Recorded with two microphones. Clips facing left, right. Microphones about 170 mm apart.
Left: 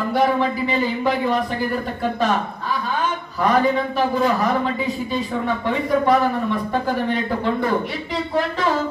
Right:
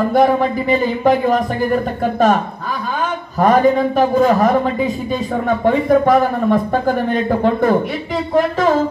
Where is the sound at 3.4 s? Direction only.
45° right (ahead or behind).